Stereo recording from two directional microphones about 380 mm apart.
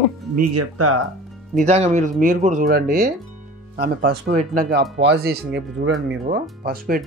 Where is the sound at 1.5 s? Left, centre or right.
Centre.